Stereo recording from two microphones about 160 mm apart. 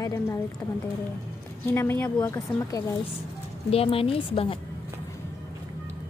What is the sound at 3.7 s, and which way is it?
Speech, 35° left (ahead or behind).